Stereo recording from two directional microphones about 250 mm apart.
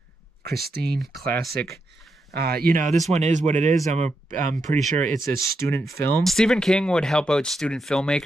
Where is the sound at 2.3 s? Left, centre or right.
Right.